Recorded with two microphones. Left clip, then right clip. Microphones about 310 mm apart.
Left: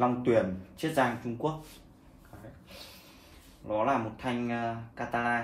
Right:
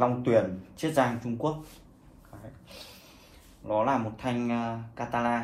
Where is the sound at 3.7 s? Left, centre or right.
Centre.